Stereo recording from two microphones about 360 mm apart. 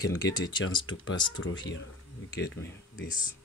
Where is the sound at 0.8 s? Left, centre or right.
Left.